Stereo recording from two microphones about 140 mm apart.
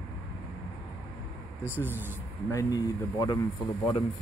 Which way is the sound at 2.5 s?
25° left (ahead or behind).